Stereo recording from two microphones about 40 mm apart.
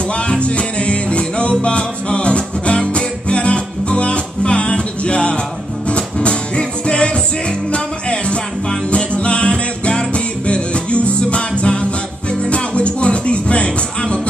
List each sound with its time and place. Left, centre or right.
0.1 s music: left